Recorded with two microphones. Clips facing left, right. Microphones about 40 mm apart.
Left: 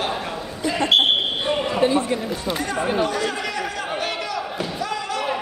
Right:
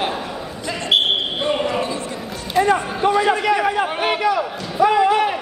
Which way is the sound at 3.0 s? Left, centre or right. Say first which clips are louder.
Right 8 dB; right.